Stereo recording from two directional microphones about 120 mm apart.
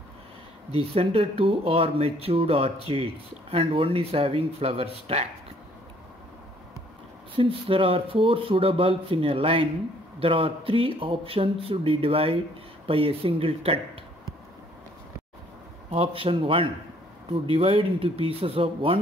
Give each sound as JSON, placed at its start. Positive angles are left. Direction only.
{"t": 0.7, "sound": "speech", "side_deg": -50}
{"t": 7.3, "sound": "speech", "side_deg": -45}
{"t": 15.9, "sound": "speech", "side_deg": -50}